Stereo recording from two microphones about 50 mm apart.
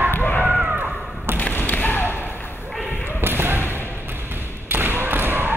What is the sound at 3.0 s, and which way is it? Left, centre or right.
Basketball bounce, right.